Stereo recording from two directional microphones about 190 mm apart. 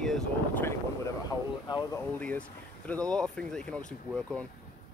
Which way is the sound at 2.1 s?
5° left (ahead or behind).